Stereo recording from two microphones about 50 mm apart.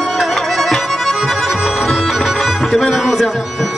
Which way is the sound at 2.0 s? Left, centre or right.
Centre.